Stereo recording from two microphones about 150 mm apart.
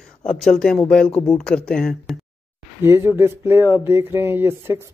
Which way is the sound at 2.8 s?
15° right (ahead or behind).